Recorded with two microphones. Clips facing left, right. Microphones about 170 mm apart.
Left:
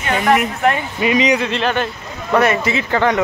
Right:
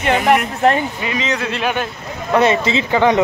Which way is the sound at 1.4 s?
5° right (ahead or behind).